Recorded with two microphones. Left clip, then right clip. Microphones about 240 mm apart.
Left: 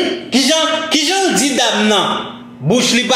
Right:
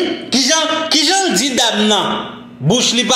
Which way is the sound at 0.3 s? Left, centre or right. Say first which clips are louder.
Left 1 dB; right.